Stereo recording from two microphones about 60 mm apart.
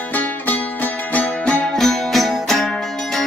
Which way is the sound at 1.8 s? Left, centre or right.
Centre.